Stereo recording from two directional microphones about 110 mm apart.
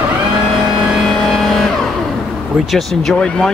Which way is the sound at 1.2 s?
5° left (ahead or behind).